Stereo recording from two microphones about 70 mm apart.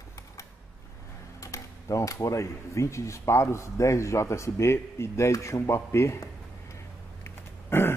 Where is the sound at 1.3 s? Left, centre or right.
Left.